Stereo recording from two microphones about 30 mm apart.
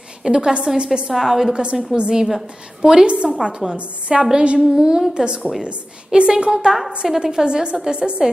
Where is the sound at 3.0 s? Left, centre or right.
Right.